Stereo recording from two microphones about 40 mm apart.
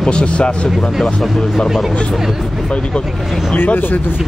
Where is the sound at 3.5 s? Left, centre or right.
Left.